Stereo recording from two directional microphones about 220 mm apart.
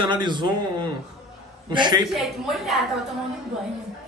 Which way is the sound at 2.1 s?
Centre (ahead or behind).